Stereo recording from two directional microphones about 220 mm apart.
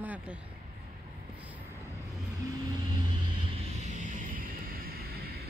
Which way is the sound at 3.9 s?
35° right (ahead or behind).